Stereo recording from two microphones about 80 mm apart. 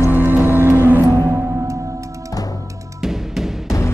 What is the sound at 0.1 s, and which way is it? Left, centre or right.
Music, right.